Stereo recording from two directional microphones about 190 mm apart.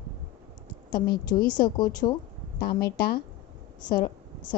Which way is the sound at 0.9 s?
50° left (ahead or behind).